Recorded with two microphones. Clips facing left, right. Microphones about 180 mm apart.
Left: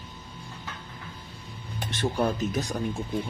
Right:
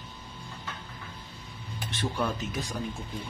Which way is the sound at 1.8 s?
45° left (ahead or behind).